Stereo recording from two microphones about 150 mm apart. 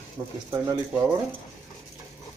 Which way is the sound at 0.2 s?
20° right (ahead or behind).